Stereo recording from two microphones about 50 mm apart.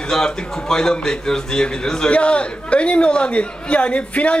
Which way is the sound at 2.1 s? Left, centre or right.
Left.